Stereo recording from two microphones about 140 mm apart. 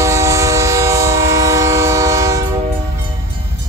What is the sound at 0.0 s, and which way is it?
Train, 20° right (ahead or behind).